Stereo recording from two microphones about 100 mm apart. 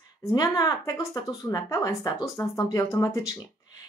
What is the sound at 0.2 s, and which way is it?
Speech, 35° left (ahead or behind).